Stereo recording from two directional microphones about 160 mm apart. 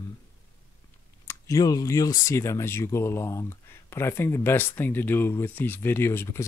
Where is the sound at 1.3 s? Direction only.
20° left (ahead or behind).